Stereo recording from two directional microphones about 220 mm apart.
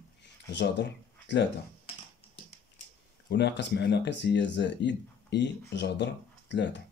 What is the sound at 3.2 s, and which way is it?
Speech, 50° left (ahead or behind).